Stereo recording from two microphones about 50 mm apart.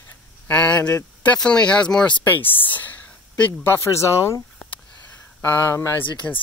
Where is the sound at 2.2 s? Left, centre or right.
Left.